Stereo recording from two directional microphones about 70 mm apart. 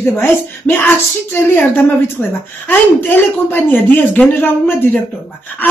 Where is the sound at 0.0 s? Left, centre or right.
Left.